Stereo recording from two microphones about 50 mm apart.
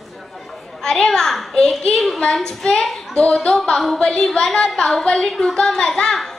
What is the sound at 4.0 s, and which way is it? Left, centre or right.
A woman's voice, centre.